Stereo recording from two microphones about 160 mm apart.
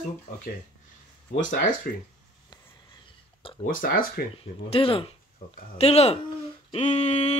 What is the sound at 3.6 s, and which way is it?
Speech, 60° left (ahead or behind).